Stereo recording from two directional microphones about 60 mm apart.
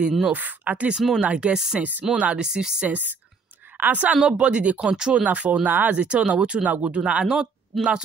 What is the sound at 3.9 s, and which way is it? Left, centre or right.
Speech, centre.